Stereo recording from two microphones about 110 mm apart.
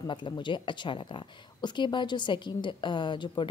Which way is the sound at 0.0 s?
45° left (ahead or behind).